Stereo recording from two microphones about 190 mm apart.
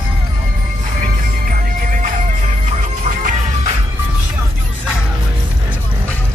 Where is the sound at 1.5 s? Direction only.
45° right (ahead or behind).